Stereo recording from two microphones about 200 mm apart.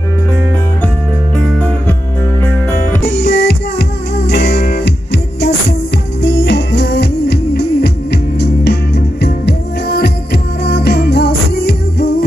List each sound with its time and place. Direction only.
1.3 s music: 5° left (ahead or behind)
3.1 s music: 60° left (ahead or behind)